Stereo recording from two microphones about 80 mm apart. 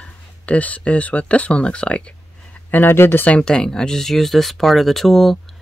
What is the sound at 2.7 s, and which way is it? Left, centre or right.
Speech, left.